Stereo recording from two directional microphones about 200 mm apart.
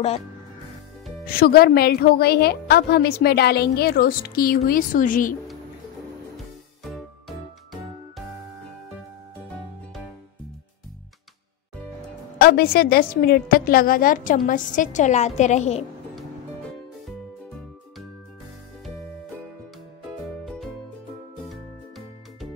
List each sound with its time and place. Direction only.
1.2 s a woman's voice: 50° left (ahead or behind)
6.3 s music: centre (ahead or behind)
12.4 s a woman's voice: 50° left (ahead or behind)
20.4 s music: centre (ahead or behind)